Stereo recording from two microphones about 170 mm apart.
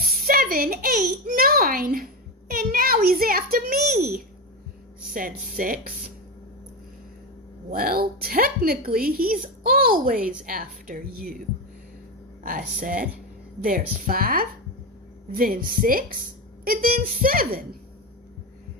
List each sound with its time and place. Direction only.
0.0 s a child's voice: 60° right (ahead or behind)
5.6 s a woman's voice: 55° right (ahead or behind)
7.7 s a woman's voice: 60° right (ahead or behind)
12.8 s a woman's voice: 55° right (ahead or behind)